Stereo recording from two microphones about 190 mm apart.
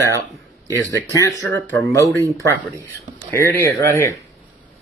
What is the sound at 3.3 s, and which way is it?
Speech, 10° left (ahead or behind).